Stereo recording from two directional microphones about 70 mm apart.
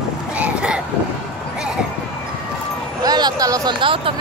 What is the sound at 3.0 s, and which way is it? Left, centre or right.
Vehicle, right.